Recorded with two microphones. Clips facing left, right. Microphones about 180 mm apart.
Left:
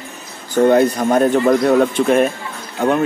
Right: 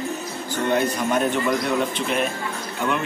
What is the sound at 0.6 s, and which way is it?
Speech, 40° left (ahead or behind).